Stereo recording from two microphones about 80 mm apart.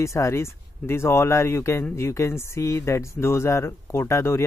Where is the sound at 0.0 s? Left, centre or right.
Left.